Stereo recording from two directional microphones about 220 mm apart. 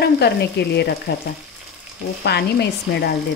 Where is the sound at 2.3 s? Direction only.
50° left (ahead or behind).